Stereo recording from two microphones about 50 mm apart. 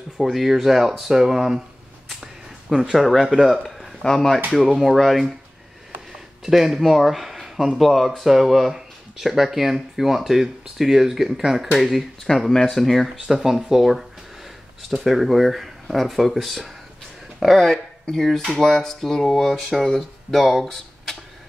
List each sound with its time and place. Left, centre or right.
0.2 s speech: centre
2.7 s speech: centre
4.5 s speech: centre
12.3 s speech: centre
13.1 s speech: centre